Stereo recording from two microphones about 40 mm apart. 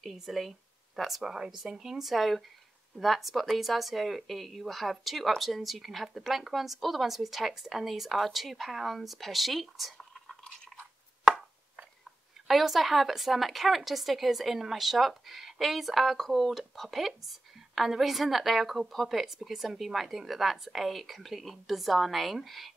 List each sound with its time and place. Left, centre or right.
0.0 s speech: centre
1.3 s speech: centre
9.9 s a sound: centre
12.4 s speech: centre